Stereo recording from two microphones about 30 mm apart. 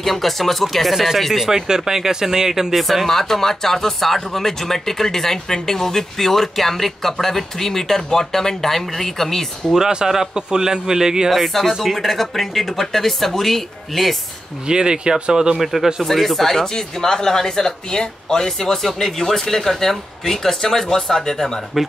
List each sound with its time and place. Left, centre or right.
0.0 s speech: centre
0.9 s speech: centre
2.7 s speech: centre
9.8 s a man's voice: centre
11.2 s speech: centre
14.7 s a man's voice: right
15.5 s speech: centre
16.0 s speech: centre; by 18.5 s left
18.8 s speech: centre
21.7 s speech: centre